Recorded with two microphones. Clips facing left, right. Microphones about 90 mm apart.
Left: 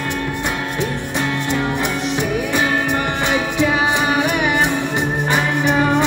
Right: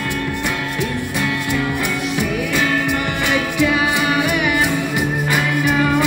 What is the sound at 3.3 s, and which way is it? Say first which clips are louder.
Music: right 1 dB; 25° left (ahead or behind).